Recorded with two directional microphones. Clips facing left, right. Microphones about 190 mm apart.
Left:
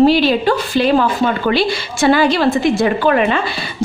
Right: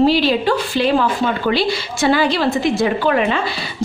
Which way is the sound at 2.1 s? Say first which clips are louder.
Left 3 dB; 55° left (ahead or behind).